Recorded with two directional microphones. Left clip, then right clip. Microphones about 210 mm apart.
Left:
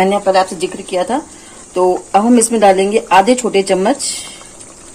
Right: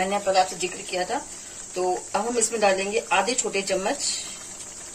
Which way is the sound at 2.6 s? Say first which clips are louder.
Left 11 dB; 50° left (ahead or behind).